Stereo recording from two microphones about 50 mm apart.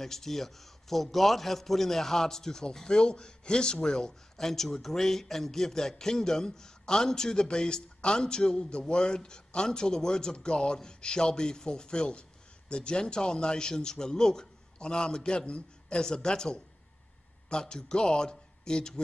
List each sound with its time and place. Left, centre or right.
0.0 s a man's voice: centre